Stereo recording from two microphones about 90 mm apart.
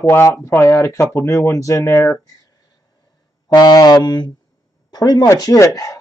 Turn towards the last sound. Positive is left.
turn(degrees=40)  # may be behind; listen again after turning